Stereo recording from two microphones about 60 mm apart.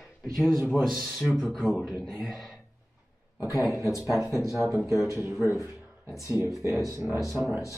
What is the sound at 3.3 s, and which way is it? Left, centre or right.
Speech, left.